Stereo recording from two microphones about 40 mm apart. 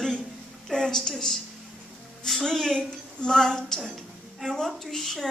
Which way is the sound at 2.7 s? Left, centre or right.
Centre.